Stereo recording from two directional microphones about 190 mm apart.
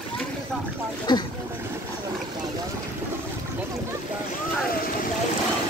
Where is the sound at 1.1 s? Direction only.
25° left (ahead or behind).